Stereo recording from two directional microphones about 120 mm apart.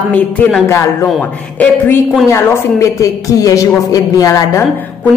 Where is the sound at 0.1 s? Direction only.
10° left (ahead or behind).